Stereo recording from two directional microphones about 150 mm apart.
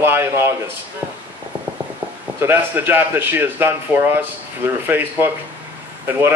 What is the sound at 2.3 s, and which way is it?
Speech, 15° right (ahead or behind).